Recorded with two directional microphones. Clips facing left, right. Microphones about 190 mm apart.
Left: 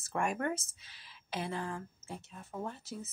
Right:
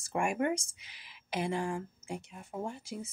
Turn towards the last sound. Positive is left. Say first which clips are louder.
# right 2 dB
turn(degrees=-10)  # may be behind; listen again after turning